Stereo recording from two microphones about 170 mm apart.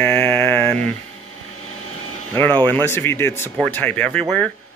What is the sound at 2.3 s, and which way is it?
Speech, 10° left (ahead or behind).